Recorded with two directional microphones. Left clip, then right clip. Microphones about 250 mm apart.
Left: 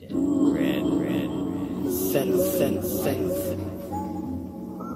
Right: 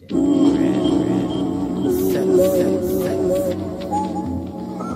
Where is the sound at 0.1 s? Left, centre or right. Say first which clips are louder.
Right 7 dB; right.